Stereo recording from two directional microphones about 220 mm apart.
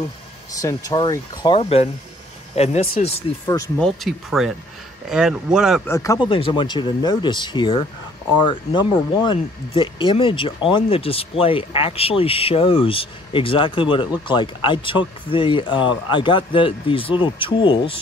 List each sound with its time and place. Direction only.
0.6 s speech: 15° left (ahead or behind)
3.4 s speech: 15° left (ahead or behind)
3.8 s speech: centre (ahead or behind)
5.9 s speech: 15° left (ahead or behind)